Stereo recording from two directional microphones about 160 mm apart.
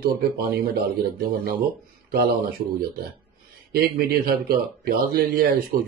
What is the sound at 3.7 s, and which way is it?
Speech, 70° right (ahead or behind).